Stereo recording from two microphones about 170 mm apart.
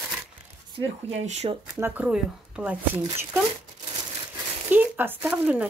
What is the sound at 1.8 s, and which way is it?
Speech, 10° right (ahead or behind).